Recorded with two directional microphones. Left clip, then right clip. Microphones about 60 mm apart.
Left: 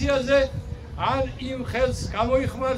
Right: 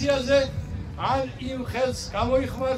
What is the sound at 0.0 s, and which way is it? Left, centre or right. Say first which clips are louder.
A man's voice: left 1 dB; centre.